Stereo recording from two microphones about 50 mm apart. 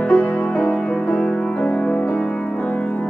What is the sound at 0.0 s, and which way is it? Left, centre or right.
Music, left.